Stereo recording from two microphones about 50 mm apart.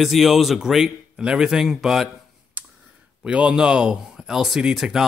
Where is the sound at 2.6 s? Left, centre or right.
Right.